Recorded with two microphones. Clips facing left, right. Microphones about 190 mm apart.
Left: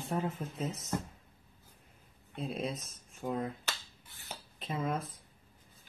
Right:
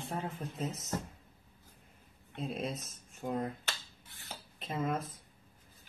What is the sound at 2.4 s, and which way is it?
Speech, centre (ahead or behind).